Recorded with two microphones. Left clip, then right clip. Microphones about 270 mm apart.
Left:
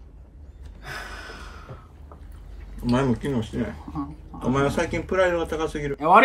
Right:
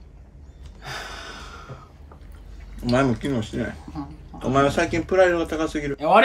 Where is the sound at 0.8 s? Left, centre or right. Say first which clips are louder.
Right 2 dB; centre.